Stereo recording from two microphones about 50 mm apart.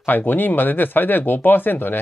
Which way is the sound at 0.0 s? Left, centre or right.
Left.